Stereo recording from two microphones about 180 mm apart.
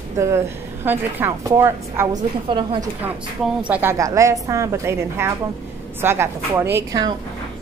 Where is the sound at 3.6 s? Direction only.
10° right (ahead or behind).